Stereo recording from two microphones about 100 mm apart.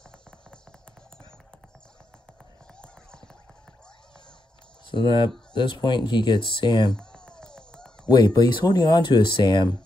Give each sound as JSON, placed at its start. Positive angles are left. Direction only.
{"t": 0.5, "sound": "music", "side_deg": 10}
{"t": 4.9, "sound": "speech", "side_deg": 50}
{"t": 7.0, "sound": "a sound", "side_deg": 10}
{"t": 8.1, "sound": "speech", "side_deg": 40}